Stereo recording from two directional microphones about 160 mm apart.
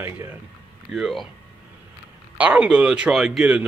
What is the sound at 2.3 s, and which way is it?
Speech, 10° right (ahead or behind).